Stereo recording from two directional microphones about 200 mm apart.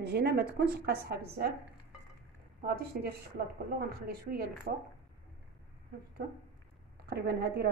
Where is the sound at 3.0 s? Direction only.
50° right (ahead or behind).